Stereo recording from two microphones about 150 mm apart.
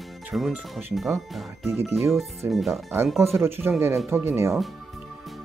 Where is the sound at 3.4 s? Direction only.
15° right (ahead or behind).